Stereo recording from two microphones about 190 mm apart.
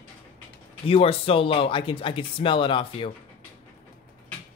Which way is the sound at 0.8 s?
30° left (ahead or behind).